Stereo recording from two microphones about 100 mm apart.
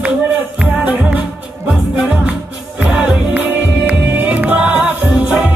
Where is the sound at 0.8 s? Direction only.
15° right (ahead or behind).